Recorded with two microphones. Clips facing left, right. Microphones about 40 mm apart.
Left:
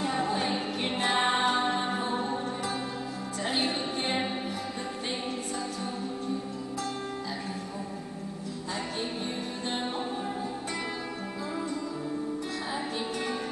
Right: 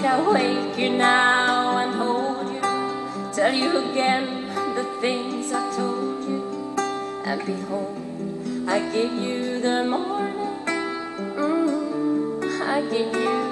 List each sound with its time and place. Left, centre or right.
0.0 s music: right
3.3 s speech: right
4.7 s music: right
8.6 s music: right
12.6 s music: right